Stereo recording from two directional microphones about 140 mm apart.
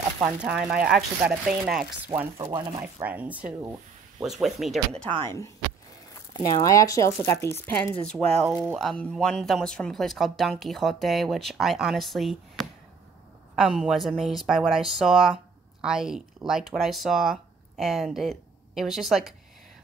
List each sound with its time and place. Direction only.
0.2 s speech: 5° right (ahead or behind)
2.3 s speech: 30° right (ahead or behind)
2.8 s speech: 15° right (ahead or behind)
5.2 s speech: 20° left (ahead or behind); by 19.3 s centre (ahead or behind)